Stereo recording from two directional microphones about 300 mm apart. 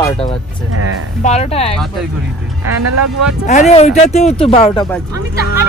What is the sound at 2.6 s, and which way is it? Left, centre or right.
Speech, right.